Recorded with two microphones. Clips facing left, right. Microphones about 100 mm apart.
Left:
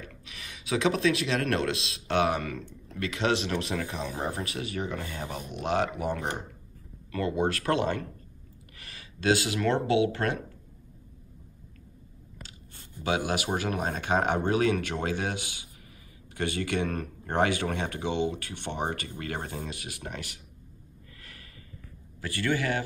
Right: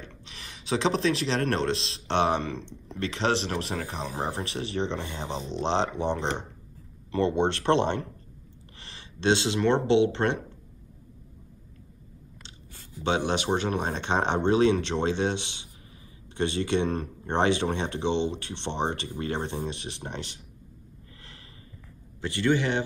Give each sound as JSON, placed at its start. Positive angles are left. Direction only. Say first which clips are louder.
{"t": 0.0, "sound": "speech", "louder": "even", "side_deg": -30}
{"t": 13.0, "sound": "speech", "louder": "right 2 dB", "side_deg": -30}
{"t": 22.2, "sound": "speech", "louder": "right 4 dB", "side_deg": -25}